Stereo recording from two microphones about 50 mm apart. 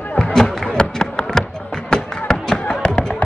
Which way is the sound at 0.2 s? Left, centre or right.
Centre.